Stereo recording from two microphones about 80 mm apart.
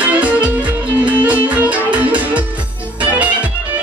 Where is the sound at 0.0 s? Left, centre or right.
Centre.